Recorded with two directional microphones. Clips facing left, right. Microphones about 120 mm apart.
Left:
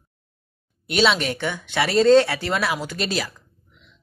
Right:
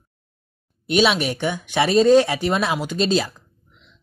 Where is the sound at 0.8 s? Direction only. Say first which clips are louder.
Right 2 dB; 15° right (ahead or behind).